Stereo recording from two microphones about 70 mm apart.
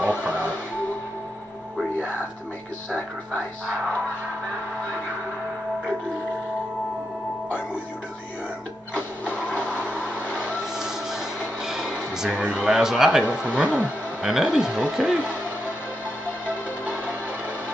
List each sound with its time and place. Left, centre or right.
0.0 s music: right
9.2 s a sound: right
10.8 s music: centre
12.4 s speech: right
12.7 s speech: centre
13.2 s speech: centre
14.2 s speech: centre